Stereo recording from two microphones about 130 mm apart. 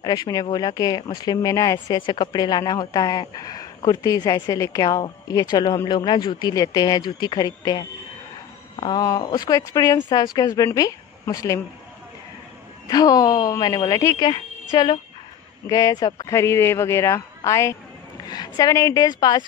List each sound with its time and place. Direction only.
0.0 s speech: 30° left (ahead or behind)
2.0 s speech: 40° left (ahead or behind)
12.8 s speech: 30° left (ahead or behind)